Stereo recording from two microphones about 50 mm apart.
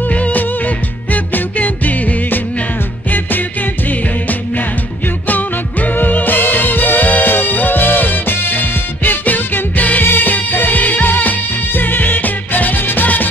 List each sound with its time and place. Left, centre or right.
0.1 s music: left
5.3 s music: left